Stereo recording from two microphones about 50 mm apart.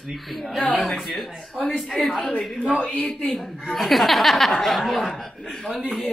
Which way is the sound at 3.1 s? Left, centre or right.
Centre.